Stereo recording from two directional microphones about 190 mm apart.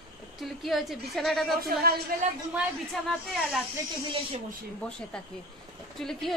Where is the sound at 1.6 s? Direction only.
50° right (ahead or behind).